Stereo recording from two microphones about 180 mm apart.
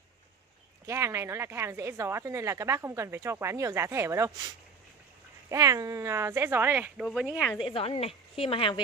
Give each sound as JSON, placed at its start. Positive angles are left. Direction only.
{"t": 0.8, "sound": "speech", "side_deg": -15}
{"t": 5.5, "sound": "speech", "side_deg": -20}
{"t": 7.6, "sound": "a woman's voice", "side_deg": 30}